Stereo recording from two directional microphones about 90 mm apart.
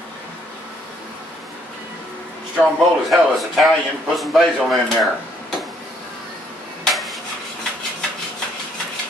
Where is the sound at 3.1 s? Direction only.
Centre (ahead or behind).